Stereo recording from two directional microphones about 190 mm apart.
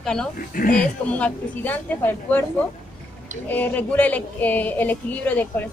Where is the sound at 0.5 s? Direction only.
45° left (ahead or behind).